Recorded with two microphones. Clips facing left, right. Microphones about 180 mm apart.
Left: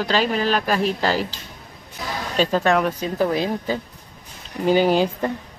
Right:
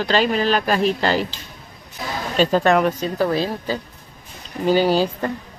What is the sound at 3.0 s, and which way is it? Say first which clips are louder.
Speech: right 1 dB; 15° left (ahead or behind).